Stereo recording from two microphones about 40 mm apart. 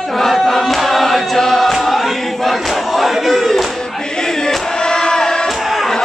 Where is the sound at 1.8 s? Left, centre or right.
Centre.